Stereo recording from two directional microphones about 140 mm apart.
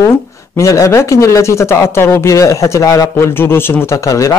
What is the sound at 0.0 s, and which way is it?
Speech, 20° left (ahead or behind).